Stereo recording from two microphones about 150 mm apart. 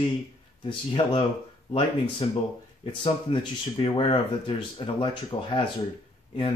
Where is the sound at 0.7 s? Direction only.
35° left (ahead or behind).